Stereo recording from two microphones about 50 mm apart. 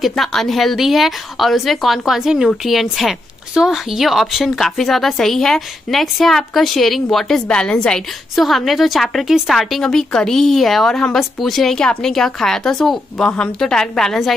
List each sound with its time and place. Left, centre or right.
0.0 s a woman's voice: centre
7.4 s speech: centre
8.4 s a woman's voice: centre
13.2 s speech: centre